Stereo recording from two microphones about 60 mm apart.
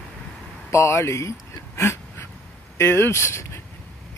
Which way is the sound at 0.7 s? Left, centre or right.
Left.